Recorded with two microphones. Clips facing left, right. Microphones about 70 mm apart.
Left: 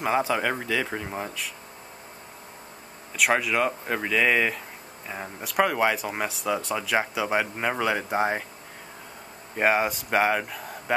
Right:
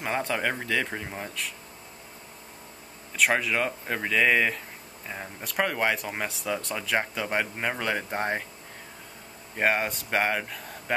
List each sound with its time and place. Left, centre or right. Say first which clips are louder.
0.0 s speech: left 4 dB; centre
3.2 s speech: left 2 dB; centre
9.6 s speech: left 3 dB; centre